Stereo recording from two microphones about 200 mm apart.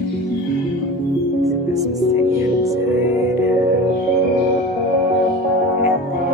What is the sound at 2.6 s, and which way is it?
Music, 15° right (ahead or behind).